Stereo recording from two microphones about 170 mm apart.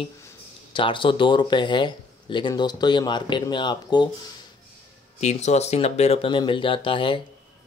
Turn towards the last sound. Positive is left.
turn(degrees=30)  # may be behind; listen again after turning